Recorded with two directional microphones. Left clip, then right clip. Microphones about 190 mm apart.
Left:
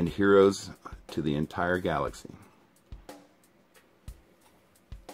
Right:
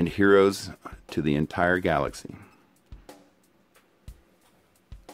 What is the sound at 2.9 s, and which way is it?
Music, centre (ahead or behind).